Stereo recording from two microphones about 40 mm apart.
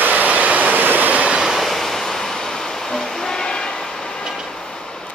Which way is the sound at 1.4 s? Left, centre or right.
Centre.